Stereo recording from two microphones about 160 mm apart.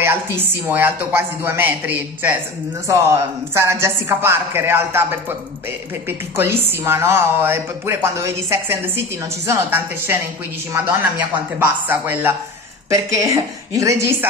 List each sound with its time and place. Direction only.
0.0 s speech: 15° right (ahead or behind)
3.5 s a woman's voice: 15° right (ahead or behind)